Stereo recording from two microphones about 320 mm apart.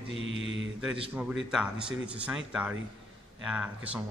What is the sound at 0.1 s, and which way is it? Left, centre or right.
Mantra, centre.